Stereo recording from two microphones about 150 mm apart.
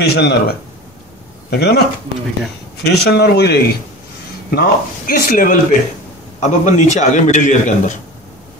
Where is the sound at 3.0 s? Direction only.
90° left.